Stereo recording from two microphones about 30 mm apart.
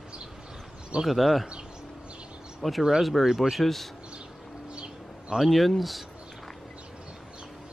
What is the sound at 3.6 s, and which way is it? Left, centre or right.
Speech, centre.